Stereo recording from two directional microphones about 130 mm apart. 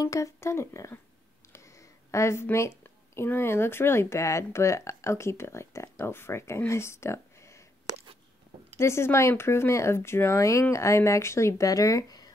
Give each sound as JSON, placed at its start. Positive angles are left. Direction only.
{"t": 0.0, "sound": "speech", "side_deg": 25}
{"t": 2.0, "sound": "speech", "side_deg": 20}
{"t": 8.7, "sound": "speech", "side_deg": 20}